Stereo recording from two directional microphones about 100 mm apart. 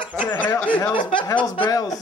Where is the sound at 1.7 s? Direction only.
40° left (ahead or behind).